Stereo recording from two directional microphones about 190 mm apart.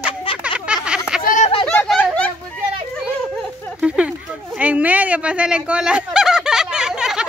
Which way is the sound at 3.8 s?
5° right (ahead or behind).